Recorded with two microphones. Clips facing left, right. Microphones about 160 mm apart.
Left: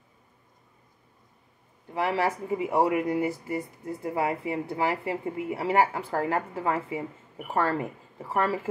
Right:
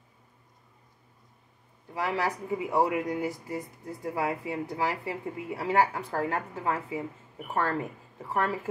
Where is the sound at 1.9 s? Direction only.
25° left (ahead or behind).